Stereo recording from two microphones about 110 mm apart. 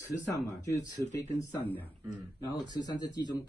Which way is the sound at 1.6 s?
15° left (ahead or behind).